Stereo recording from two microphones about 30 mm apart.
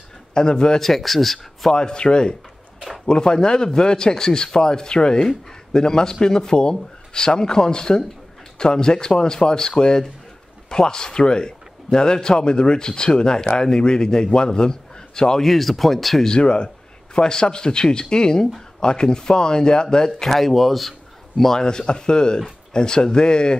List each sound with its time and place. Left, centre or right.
0.3 s a man's voice: left
0.7 s speech: centre
1.7 s a man's voice: left
15.4 s speech: centre
16.3 s a sound: left
17.2 s a man's voice: left
20.3 s speech: centre
21.5 s a man's voice: left